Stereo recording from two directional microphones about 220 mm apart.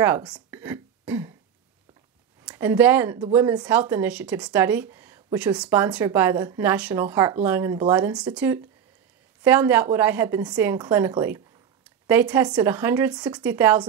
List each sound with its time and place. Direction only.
0.0 s speech: 10° right (ahead or behind)
2.4 s a woman's voice: 10° right (ahead or behind)
12.4 s a woman's voice: 20° right (ahead or behind)
13.4 s a woman's voice: 10° right (ahead or behind)